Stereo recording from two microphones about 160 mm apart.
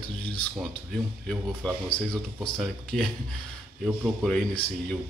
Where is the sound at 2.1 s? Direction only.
5° left (ahead or behind).